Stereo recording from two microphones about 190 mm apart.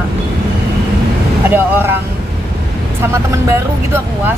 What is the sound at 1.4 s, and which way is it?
Speech, 10° right (ahead or behind).